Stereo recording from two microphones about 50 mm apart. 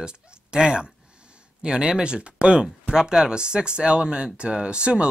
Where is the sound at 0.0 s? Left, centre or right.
Centre.